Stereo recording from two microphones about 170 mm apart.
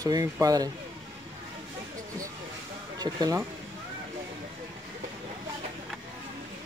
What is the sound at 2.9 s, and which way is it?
Speech, 25° right (ahead or behind).